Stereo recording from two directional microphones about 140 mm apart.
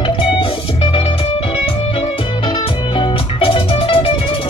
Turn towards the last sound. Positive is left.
turn(degrees=40)  # may be behind; listen again after turning